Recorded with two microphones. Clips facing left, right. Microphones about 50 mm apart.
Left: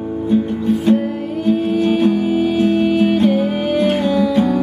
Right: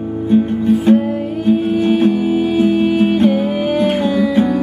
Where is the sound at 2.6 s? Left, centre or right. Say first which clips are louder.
Right 2 dB; centre.